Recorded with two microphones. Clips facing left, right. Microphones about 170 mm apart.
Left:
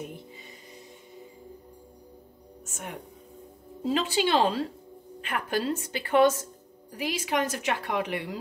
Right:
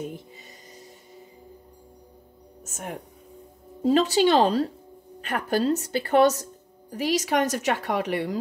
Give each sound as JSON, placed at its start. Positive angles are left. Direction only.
{"t": 2.6, "sound": "music", "side_deg": -40}
{"t": 3.8, "sound": "a woman's voice", "side_deg": -40}